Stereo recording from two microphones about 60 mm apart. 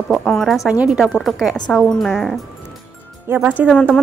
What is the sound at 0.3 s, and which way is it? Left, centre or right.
Speech, centre.